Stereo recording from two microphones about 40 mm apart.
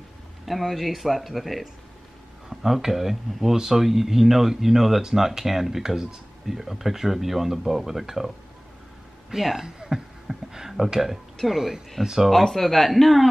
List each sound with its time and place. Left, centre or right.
0.5 s speech: centre
9.3 s speech: centre
9.8 s a sound: centre
11.4 s speech: centre
12.3 s speech: centre